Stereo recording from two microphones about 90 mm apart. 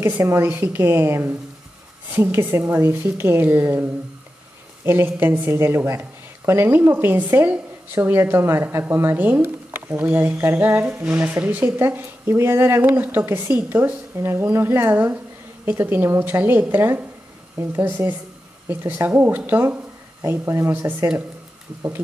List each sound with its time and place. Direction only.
0.0 s a woman's voice: 30° right (ahead or behind)